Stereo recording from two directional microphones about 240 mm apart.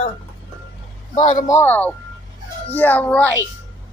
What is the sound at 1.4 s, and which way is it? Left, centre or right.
A man's voice, centre.